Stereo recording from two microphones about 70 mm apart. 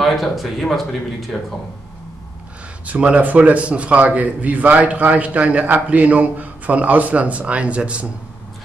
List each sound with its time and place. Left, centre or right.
0.0 s speech: centre
2.9 s a man's voice: centre